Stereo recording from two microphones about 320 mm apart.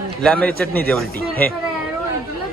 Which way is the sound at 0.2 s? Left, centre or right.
Centre.